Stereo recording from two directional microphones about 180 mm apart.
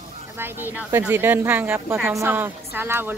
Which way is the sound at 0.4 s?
10° right (ahead or behind).